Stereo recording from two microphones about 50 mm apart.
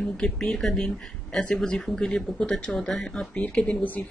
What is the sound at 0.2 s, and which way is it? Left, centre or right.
Speech, centre.